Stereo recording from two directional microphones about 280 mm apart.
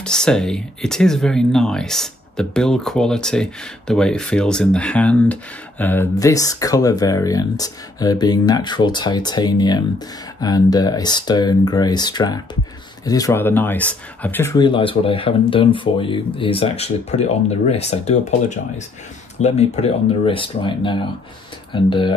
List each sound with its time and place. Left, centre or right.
0.0 s speech: centre